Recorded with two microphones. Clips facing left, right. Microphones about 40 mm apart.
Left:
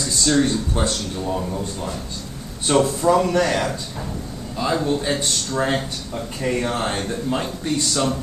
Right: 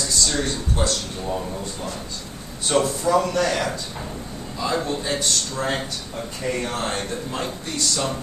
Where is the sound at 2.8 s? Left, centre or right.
Centre.